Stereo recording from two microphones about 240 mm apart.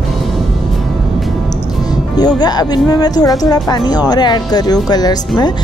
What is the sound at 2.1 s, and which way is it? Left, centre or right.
Speech, centre.